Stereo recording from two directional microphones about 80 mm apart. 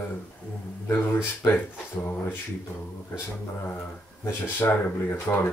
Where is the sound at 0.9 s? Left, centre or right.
Left.